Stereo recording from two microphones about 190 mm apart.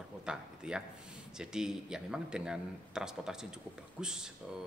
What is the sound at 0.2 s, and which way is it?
Speech, 5° right (ahead or behind).